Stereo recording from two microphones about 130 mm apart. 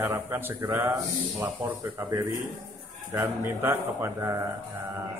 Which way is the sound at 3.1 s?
15° right (ahead or behind).